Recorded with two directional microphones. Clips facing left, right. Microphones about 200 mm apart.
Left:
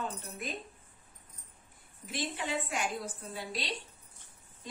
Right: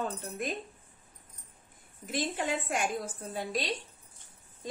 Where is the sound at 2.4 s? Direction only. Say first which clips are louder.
Right 2 dB; 50° right (ahead or behind).